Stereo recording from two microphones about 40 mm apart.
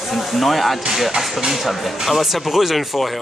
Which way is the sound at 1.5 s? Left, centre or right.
Centre.